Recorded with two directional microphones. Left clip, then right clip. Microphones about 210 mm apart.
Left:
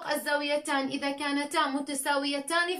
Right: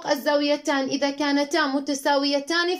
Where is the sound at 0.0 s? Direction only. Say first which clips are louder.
Right 7 dB; 30° right (ahead or behind).